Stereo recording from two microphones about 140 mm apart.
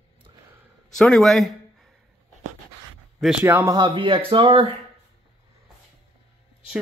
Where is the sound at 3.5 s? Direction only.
15° right (ahead or behind).